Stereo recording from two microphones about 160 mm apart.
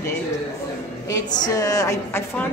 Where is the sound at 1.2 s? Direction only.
50° left (ahead or behind).